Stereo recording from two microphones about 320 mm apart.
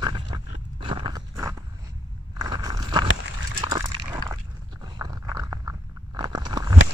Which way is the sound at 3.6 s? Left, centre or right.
Centre.